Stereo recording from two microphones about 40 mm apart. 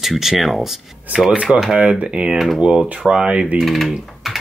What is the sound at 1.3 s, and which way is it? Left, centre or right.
Speech, right.